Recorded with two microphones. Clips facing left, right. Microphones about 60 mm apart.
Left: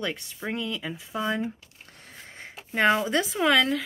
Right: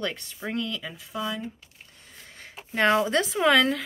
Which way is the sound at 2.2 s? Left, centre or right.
Left.